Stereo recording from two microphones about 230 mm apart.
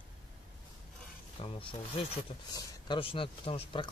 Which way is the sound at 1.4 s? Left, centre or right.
Left.